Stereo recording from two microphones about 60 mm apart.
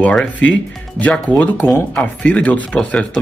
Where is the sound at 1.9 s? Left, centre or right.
Left.